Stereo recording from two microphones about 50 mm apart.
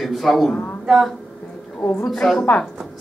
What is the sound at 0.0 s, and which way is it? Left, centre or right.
A man's voice, centre.